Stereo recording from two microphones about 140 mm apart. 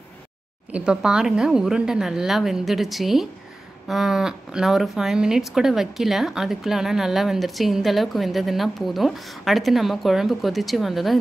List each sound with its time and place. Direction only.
0.7 s speech: 5° right (ahead or behind)